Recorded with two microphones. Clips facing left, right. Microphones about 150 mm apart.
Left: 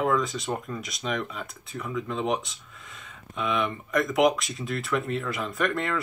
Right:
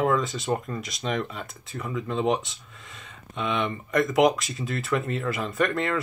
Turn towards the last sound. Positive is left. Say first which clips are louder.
# right 2 dB
turn(degrees=0)  # may be behind; listen again after turning